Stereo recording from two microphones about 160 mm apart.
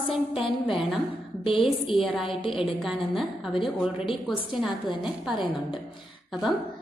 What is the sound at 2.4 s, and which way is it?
Speech, 35° left (ahead or behind).